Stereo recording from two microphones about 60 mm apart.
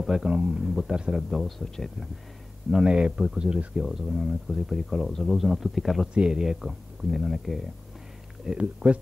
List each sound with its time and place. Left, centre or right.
0.0 s a man's voice: centre
2.7 s speech: centre
6.1 s speech: centre
8.5 s speech: right